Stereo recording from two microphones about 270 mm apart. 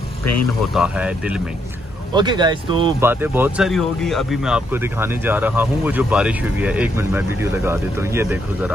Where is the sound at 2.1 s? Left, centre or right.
Centre.